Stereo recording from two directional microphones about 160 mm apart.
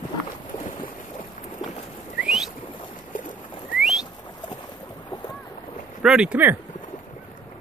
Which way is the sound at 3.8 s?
5° right (ahead or behind).